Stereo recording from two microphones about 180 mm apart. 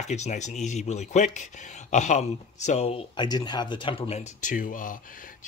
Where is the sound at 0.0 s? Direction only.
40° left (ahead or behind).